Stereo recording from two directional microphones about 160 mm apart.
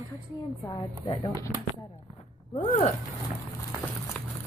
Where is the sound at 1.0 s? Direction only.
30° left (ahead or behind).